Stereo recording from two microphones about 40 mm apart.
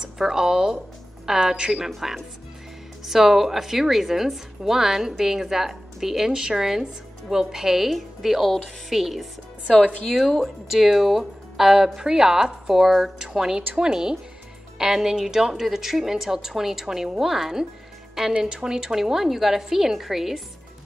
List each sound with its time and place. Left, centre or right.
0.0 s a woman's voice: centre
3.1 s a woman's voice: centre